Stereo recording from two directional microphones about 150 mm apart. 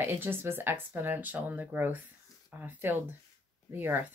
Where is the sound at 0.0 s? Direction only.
15° right (ahead or behind).